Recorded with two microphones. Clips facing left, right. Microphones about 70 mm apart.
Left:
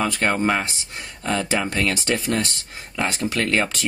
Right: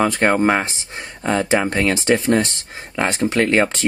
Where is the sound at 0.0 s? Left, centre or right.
Right.